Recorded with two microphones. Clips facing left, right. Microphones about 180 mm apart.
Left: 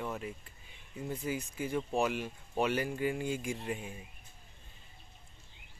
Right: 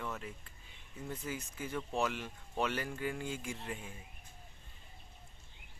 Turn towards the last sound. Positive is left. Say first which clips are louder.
# left 5 dB
turn(degrees=15)  # may be behind; listen again after turning